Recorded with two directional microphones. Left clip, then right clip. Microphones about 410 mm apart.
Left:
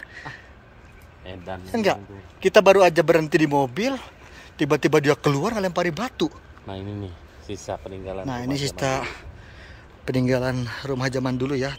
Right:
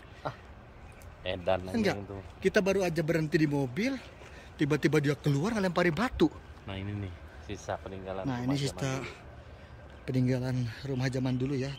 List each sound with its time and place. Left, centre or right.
1.2 s speech: centre
7.4 s speech: left
8.3 s speech: centre